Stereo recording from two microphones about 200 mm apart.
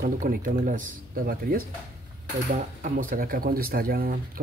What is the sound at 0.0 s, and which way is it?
Speech, 45° right (ahead or behind).